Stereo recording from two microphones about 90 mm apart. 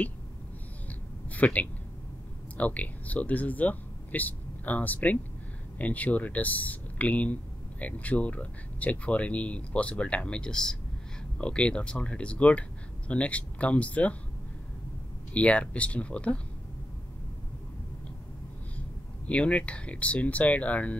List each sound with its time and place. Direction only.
0.8 s a sound: 15° left (ahead or behind)
2.5 s speech: 15° left (ahead or behind)
15.3 s speech: 15° left (ahead or behind)
18.8 s speech: 15° left (ahead or behind)